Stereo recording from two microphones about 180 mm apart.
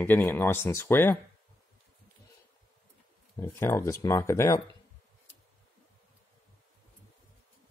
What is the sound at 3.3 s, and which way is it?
Speech, 15° left (ahead or behind).